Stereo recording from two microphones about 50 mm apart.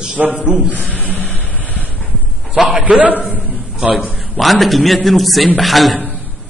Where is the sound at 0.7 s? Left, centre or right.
Left.